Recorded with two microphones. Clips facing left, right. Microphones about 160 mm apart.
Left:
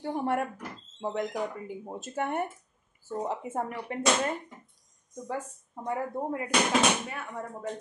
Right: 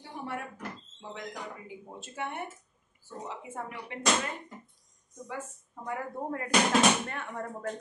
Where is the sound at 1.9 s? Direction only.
45° left (ahead or behind).